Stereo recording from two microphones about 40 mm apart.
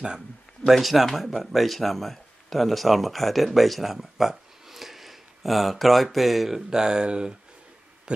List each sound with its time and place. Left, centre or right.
0.7 s speech: centre
6.7 s speech: centre